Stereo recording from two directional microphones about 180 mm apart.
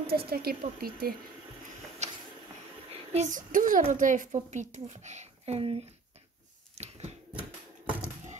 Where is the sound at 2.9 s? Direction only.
35° right (ahead or behind).